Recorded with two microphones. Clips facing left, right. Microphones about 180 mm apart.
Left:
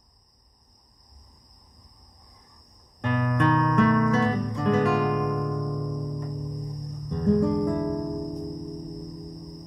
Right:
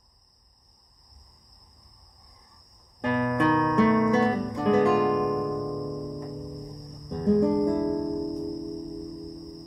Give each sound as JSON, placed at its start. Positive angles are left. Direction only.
{"t": 3.0, "sound": "music", "side_deg": -25}
{"t": 4.1, "sound": "music", "side_deg": -15}
{"t": 5.9, "sound": "music", "side_deg": 0}
{"t": 7.1, "sound": "music", "side_deg": -15}
{"t": 7.9, "sound": "music", "side_deg": 0}